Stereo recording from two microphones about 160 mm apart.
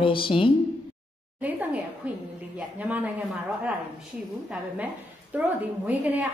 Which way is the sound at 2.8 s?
10° right (ahead or behind).